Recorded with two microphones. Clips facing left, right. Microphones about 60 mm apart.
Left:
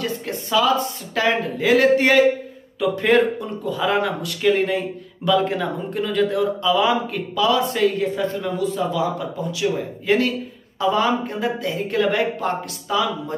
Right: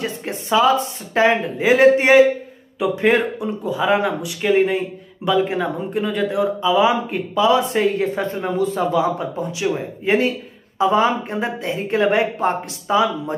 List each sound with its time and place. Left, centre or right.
0.0 s speech: right